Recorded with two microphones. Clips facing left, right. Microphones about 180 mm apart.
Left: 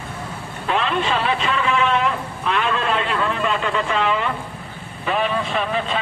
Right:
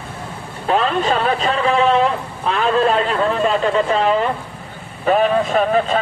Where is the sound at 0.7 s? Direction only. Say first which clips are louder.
Right 4 dB; 40° right (ahead or behind).